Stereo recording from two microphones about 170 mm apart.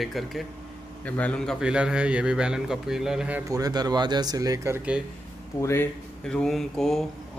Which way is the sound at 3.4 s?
20° right (ahead or behind).